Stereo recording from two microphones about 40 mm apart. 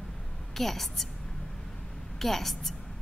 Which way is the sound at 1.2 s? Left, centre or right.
Centre.